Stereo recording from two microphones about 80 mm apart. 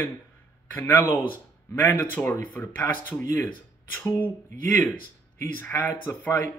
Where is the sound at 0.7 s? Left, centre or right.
Left.